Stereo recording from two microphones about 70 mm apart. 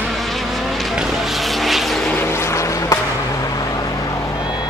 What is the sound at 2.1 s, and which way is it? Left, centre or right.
Vehicle, left.